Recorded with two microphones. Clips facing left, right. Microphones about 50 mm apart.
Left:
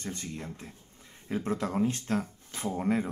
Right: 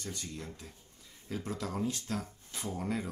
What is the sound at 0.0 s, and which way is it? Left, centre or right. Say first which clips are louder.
Speech: left 4 dB; left.